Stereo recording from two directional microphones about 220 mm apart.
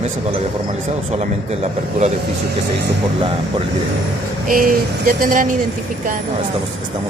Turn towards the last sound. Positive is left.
turn(degrees=-40)  # may be behind; listen again after turning